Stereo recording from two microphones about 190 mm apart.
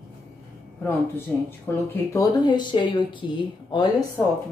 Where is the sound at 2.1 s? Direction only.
25° left (ahead or behind).